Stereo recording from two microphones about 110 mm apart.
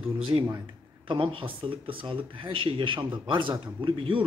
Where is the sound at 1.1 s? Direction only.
55° right (ahead or behind).